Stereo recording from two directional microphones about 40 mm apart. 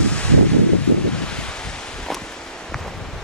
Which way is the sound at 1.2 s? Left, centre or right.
Left.